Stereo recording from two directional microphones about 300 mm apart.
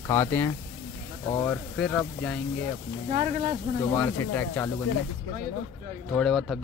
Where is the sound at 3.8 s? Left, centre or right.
Centre.